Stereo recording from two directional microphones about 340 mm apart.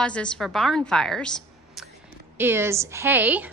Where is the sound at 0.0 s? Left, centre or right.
Centre.